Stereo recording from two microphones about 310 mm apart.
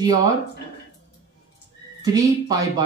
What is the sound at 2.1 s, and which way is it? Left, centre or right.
Speech, centre.